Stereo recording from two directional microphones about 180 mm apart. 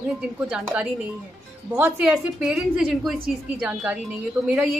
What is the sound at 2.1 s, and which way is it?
A woman's voice, centre (ahead or behind).